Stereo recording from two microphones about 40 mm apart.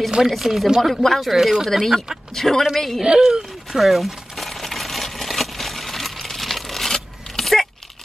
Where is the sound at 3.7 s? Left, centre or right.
Centre.